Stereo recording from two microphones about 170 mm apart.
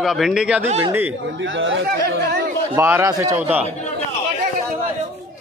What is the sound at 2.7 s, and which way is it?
Speech, 15° right (ahead or behind).